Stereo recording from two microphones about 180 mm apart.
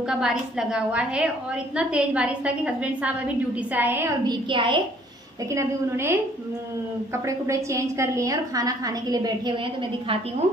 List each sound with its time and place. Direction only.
0.1 s a woman's voice: 5° right (ahead or behind)
4.3 s a woman's voice: 25° right (ahead or behind)
5.5 s a woman's voice: 15° right (ahead or behind)
7.2 s a woman's voice: 15° right (ahead or behind)